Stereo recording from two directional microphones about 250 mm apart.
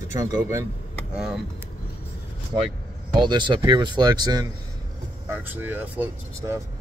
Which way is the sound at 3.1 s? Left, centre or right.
Centre.